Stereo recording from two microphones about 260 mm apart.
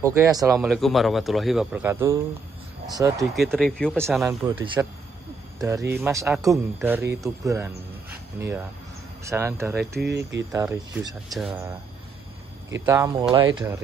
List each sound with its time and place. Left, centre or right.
0.0 s speech: centre
3.2 s speech: centre
9.9 s speech: right
10.5 s speech: centre
12.8 s speech: centre